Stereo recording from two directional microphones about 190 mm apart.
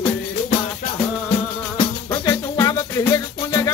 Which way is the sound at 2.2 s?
20° left (ahead or behind).